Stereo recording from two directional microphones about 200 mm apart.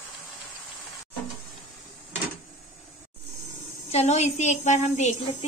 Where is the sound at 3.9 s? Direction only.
35° left (ahead or behind).